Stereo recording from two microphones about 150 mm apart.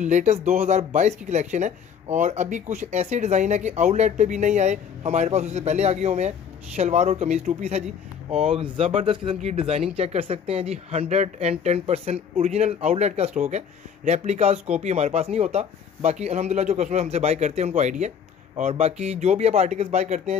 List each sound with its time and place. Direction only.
0.0 s speech: 50° right (ahead or behind)